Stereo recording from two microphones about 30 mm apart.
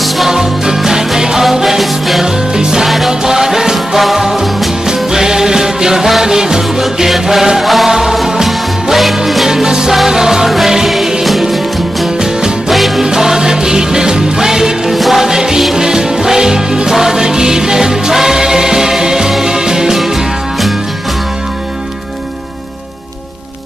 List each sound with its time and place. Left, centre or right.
0.3 s music: centre
2.5 s music: centre
4.8 s music: centre
7.6 s music: centre
7.9 s music: centre
8.9 s music: centre
9.5 s music: right
10.9 s music: centre
12.6 s music: centre
13.0 s music: centre
15.2 s music: centre